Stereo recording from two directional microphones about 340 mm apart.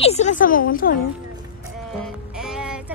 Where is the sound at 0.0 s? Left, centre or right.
Centre.